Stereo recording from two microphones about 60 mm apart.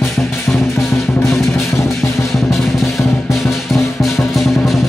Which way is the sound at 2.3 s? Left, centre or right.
Centre.